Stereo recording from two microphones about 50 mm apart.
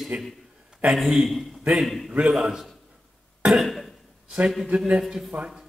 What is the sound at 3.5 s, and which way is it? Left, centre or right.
Cough, centre.